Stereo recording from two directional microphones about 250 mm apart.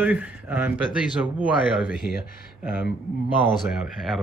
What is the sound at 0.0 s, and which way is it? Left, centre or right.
Speech, centre.